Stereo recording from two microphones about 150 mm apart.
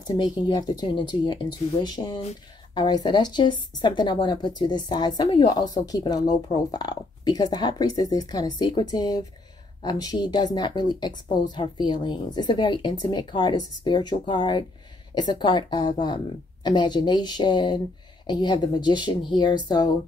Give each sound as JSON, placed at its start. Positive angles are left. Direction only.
{"t": 0.0, "sound": "a woman's voice", "side_deg": 30}